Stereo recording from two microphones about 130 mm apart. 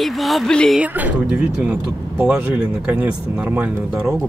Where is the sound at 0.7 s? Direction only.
10° right (ahead or behind).